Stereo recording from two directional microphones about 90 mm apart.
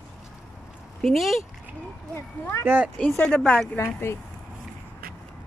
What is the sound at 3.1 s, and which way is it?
Speech, 10° left (ahead or behind).